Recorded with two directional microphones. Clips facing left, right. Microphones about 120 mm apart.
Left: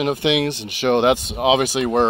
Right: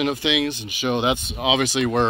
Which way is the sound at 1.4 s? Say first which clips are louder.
Left 2 dB; 50° left (ahead or behind).